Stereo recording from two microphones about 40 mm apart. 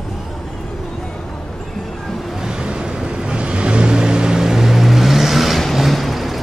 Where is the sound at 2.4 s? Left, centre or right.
Centre.